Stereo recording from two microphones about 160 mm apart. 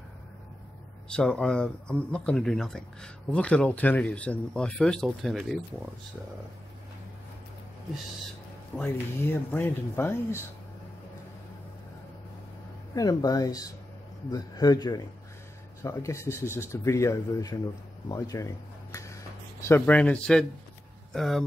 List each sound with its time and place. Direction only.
1.0 s speech: 5° left (ahead or behind)
8.7 s speech: 10° left (ahead or behind)
12.9 s speech: 25° left (ahead or behind); by 21.5 s centre (ahead or behind)